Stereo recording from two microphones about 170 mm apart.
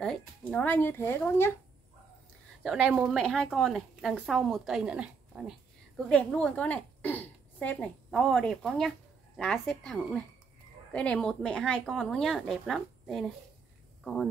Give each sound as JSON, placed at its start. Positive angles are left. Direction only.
{"t": 0.0, "sound": "speech", "side_deg": 5}
{"t": 2.6, "sound": "speech", "side_deg": 0}
{"t": 6.0, "sound": "a woman's voice", "side_deg": 5}